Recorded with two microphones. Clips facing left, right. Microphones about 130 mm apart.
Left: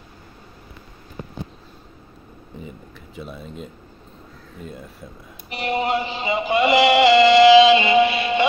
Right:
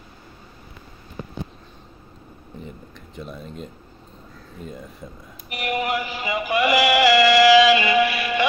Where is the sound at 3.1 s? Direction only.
5° left (ahead or behind).